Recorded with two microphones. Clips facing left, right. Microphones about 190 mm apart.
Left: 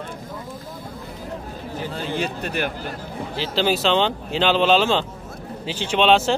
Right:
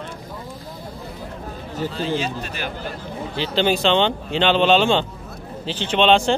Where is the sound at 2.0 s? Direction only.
55° left (ahead or behind).